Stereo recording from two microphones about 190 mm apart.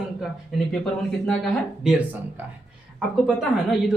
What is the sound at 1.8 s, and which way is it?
Speech, 10° right (ahead or behind).